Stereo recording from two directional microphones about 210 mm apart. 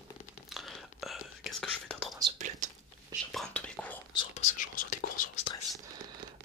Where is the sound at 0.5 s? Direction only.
Centre (ahead or behind).